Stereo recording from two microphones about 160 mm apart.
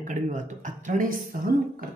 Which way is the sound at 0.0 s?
55° right (ahead or behind).